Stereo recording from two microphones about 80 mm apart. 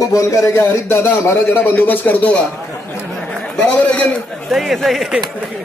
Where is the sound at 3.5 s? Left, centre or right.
Centre.